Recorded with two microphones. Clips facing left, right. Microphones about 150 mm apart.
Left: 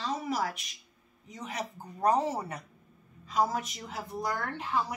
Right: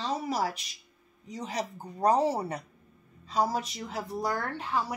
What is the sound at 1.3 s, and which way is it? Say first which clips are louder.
A woman's voice: right 4 dB; 35° right (ahead or behind).